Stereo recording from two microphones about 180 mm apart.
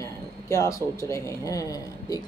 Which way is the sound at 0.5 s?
20° left (ahead or behind).